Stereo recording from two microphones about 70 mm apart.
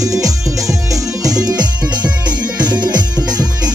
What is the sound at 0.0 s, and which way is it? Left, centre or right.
Music, right.